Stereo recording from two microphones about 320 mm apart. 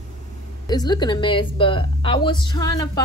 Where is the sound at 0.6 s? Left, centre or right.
Centre.